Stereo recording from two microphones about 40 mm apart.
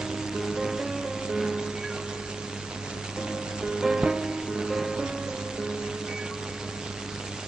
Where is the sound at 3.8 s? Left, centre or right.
Centre.